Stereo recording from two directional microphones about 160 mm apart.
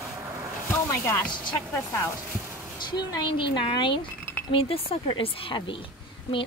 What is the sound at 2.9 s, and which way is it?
A woman's voice, 30° left (ahead or behind).